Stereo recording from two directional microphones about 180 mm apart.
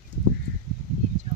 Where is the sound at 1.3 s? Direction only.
35° right (ahead or behind).